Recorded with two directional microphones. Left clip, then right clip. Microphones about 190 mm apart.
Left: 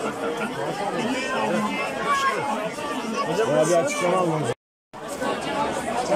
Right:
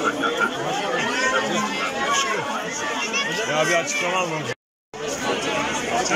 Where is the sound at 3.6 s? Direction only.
15° left (ahead or behind).